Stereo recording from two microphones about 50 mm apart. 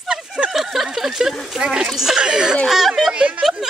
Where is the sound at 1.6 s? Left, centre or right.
Centre.